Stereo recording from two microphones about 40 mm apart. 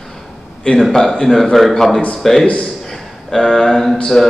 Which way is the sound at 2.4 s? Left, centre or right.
Left.